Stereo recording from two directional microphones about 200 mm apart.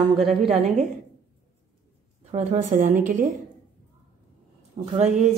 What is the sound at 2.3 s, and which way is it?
Speech, 40° right (ahead or behind).